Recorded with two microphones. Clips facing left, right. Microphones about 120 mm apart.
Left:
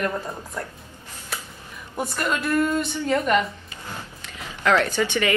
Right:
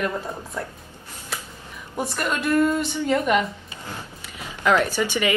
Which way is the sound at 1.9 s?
Centre (ahead or behind).